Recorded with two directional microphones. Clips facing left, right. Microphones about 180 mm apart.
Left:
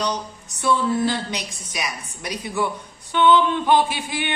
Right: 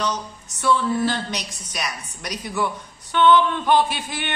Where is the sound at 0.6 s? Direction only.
15° left (ahead or behind).